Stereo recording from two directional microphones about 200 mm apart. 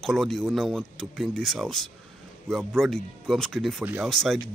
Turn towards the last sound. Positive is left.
turn(degrees=0)  # may be behind; listen again after turning